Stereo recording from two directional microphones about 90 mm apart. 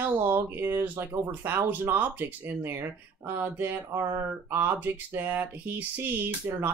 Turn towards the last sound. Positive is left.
turn(degrees=-25)  # may be behind; listen again after turning